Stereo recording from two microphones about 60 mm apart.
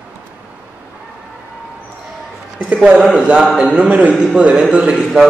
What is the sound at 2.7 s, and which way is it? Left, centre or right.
A man's voice, centre.